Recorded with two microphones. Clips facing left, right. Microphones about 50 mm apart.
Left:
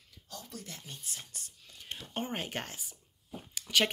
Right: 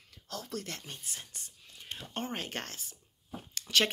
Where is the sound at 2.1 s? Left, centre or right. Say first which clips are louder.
Left 1 dB; centre.